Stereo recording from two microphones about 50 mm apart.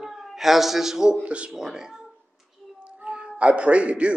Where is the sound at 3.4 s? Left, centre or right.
Right.